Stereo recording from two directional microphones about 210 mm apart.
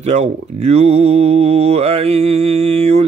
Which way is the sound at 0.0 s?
30° right (ahead or behind).